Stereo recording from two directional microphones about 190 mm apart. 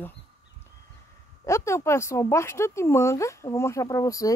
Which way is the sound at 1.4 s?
15° left (ahead or behind).